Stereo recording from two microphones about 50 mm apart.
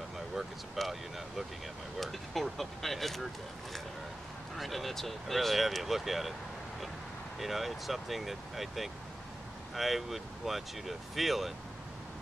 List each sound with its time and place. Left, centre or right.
0.4 s speech: centre
4.6 s speech: centre
7.3 s speech: centre